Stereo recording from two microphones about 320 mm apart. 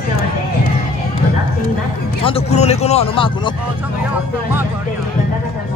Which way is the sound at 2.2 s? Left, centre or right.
Centre.